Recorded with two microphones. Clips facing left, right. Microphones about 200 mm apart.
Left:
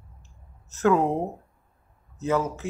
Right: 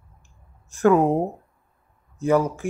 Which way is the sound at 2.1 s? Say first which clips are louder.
Right 5 dB; 15° right (ahead or behind).